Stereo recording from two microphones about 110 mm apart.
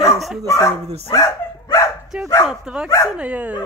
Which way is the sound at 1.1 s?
25° left (ahead or behind).